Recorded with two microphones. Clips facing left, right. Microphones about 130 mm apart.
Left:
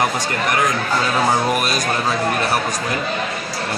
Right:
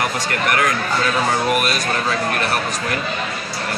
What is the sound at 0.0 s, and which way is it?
Speech, 20° left (ahead or behind).